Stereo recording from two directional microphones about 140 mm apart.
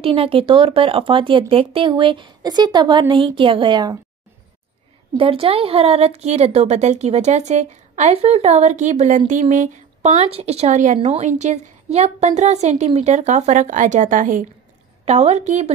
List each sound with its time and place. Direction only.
0.0 s speech: 40° right (ahead or behind)
5.1 s a woman's voice: 40° right (ahead or behind); by 14.4 s 70° right (ahead or behind)
15.0 s speech: 50° right (ahead or behind)